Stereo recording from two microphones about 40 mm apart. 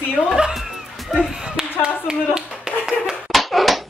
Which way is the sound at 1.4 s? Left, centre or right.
Centre.